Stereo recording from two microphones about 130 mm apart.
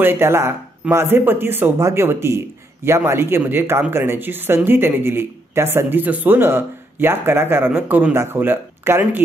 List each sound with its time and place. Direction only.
0.0 s speech: 15° right (ahead or behind)